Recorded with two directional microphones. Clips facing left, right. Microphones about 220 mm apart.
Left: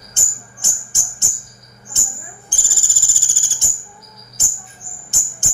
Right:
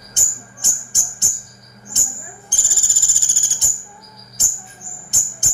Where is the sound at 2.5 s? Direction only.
20° right (ahead or behind).